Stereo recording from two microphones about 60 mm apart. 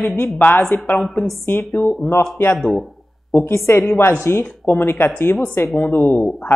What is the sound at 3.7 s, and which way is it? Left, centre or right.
Speech, left.